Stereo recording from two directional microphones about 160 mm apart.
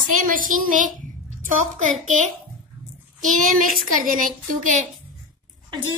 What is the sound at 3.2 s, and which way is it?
A woman's voice, 55° right (ahead or behind).